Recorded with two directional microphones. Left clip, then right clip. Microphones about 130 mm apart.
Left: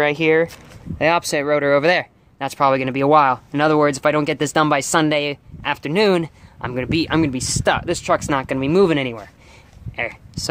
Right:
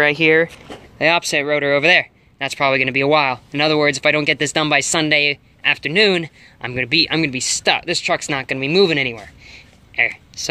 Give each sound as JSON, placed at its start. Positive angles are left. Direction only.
{"t": 0.0, "sound": "speech", "side_deg": 15}
{"t": 0.9, "sound": "speech", "side_deg": 30}